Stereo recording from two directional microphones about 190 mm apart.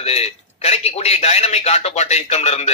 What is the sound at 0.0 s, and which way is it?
A man's voice, 35° left (ahead or behind).